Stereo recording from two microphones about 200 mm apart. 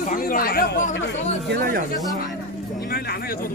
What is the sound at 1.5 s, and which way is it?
Speech, 45° right (ahead or behind).